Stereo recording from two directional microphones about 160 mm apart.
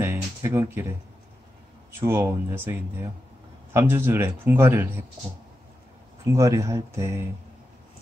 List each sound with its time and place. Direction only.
0.0 s music: 15° right (ahead or behind)
1.9 s speech: 15° right (ahead or behind)
3.7 s speech: 15° right (ahead or behind)
6.3 s speech: 20° right (ahead or behind)